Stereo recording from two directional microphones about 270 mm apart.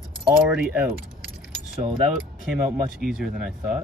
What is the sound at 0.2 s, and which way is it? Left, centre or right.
Speech, centre.